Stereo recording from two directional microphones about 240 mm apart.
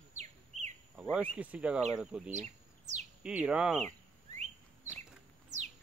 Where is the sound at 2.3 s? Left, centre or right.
Right.